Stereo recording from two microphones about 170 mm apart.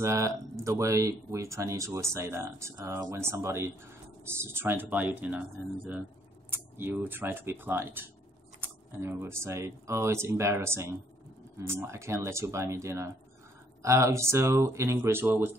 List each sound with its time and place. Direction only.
0.0 s speech: 20° right (ahead or behind)